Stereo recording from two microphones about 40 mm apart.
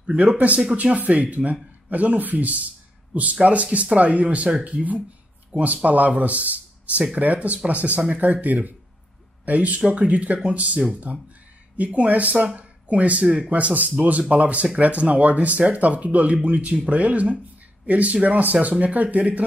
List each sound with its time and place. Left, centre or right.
0.0 s speech: right